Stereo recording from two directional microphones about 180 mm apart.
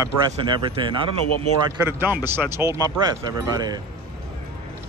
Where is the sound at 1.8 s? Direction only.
10° right (ahead or behind).